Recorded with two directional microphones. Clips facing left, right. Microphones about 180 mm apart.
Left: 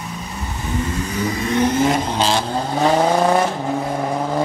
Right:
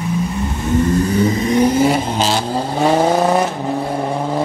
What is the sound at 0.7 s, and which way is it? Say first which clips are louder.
Vehicle: right 9 dB; 45° right (ahead or behind).